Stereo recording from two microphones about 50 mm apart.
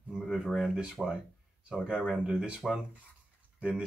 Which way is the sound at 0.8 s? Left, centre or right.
Centre.